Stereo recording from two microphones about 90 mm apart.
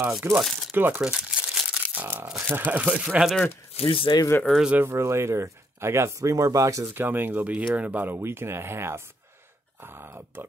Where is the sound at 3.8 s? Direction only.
80° left.